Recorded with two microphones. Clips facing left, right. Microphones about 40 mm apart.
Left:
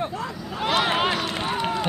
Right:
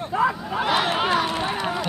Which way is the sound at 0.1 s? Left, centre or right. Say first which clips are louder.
Right 10 dB; centre.